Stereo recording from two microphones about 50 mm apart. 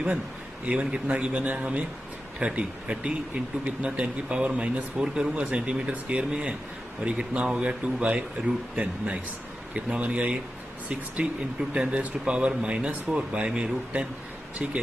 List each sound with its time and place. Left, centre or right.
0.7 s speech: right
4.9 s speech: centre